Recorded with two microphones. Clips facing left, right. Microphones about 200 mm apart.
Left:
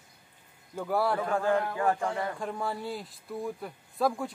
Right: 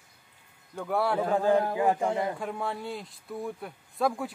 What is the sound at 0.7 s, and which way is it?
Speech, centre (ahead or behind).